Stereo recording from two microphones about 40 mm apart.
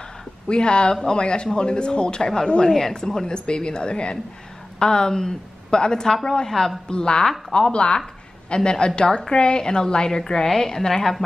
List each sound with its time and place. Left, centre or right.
0.5 s a woman's voice: left
6.9 s a woman's voice: left